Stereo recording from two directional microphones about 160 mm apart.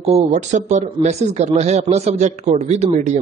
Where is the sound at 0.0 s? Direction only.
40° right (ahead or behind).